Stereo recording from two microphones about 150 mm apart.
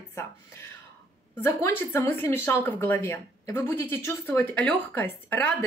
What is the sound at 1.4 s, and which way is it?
A woman's voice, 15° left (ahead or behind).